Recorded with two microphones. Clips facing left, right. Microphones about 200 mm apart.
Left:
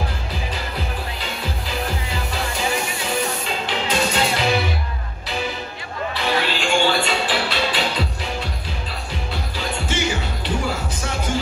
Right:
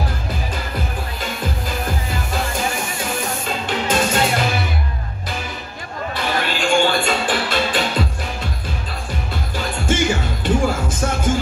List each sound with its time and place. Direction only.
2.0 s music: 45° right (ahead or behind)
6.1 s music: 50° right (ahead or behind)
9.6 s music: 50° right (ahead or behind)